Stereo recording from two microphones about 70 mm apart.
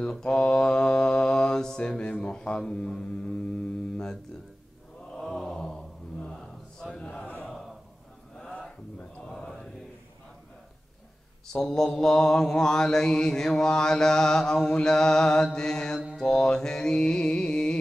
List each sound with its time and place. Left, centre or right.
0.0 s mantra: centre
7.4 s a sound: centre
9.3 s mantra: centre
11.4 s mantra: centre
16.2 s music: centre